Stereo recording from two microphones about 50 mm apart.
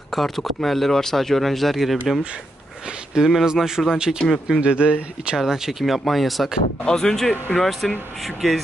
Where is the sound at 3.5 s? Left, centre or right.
Centre.